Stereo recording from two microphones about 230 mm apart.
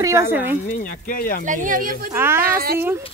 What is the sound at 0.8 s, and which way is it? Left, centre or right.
Speech, left.